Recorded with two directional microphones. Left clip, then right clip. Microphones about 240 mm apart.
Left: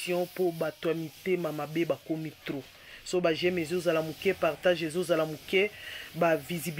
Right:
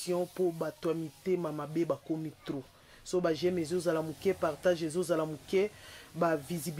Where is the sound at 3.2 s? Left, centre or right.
Centre.